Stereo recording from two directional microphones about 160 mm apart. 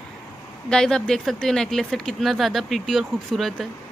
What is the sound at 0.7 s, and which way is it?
Speech, 5° left (ahead or behind).